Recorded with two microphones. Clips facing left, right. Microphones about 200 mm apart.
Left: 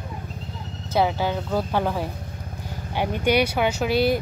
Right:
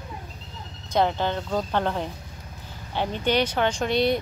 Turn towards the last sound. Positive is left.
turn(degrees=5)  # may be behind; listen again after turning